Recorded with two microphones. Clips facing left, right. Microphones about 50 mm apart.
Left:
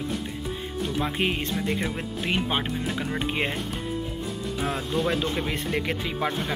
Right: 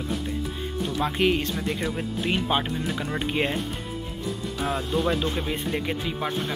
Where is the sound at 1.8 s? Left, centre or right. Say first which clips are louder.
Right 1 dB; left.